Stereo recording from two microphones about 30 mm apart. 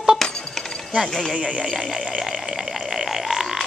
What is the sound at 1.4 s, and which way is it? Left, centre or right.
Speech, right.